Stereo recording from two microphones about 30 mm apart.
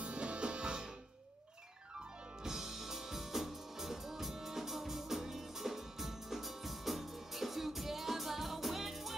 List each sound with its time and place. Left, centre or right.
0.0 s music: right
2.0 s music: centre